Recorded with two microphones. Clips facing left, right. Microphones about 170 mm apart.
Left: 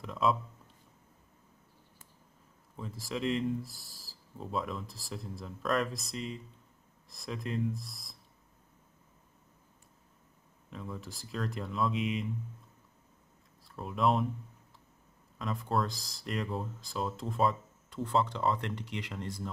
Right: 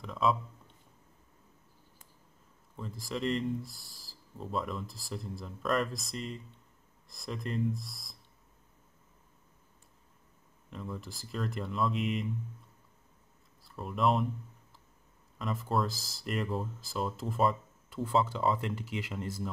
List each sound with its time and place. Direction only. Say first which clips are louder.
0.0 s speech: even; centre (ahead or behind)
2.8 s speech: even; centre (ahead or behind)
10.7 s speech: right 1 dB; centre (ahead or behind)
13.7 s speech: even; centre (ahead or behind)
15.3 s speech: right 1 dB; centre (ahead or behind)